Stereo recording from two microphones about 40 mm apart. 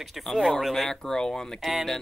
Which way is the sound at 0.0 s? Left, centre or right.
Centre.